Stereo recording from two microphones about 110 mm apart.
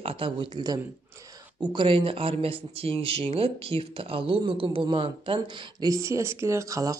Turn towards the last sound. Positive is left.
turn(degrees=-30)  # may be behind; listen again after turning